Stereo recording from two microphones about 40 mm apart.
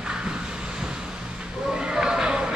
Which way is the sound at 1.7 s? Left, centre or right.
Centre.